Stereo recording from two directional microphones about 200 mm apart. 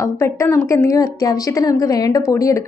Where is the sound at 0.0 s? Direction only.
15° left (ahead or behind).